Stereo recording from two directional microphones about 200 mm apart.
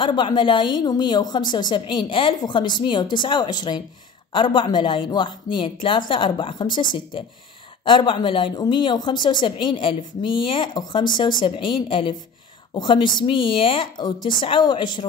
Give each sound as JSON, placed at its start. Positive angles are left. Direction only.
{"t": 0.0, "sound": "speech", "side_deg": 20}